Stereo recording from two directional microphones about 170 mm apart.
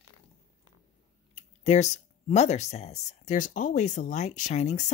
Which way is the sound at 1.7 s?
40° left (ahead or behind).